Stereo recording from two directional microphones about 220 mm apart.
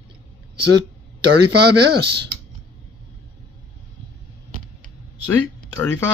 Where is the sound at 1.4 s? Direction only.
50° right (ahead or behind).